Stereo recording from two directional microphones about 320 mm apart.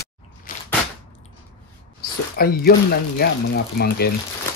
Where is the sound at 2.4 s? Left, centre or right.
Left.